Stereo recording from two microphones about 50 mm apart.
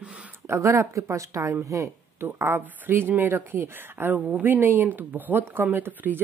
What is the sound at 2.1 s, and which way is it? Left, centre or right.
Speech, right.